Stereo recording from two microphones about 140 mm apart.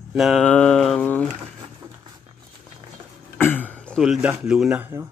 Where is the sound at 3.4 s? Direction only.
15° left (ahead or behind).